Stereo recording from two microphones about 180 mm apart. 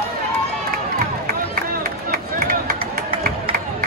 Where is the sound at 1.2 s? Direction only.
55° right (ahead or behind).